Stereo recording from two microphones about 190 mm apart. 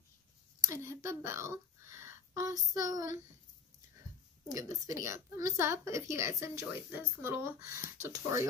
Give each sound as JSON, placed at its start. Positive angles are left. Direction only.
{"t": 0.7, "sound": "speech", "side_deg": -15}
{"t": 4.6, "sound": "a woman's voice", "side_deg": -15}